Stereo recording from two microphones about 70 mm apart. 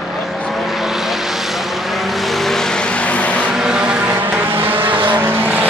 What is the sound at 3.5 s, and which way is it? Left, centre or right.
Vehicle, centre.